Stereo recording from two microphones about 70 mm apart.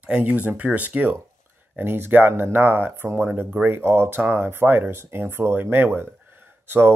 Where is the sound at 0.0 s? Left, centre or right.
Centre.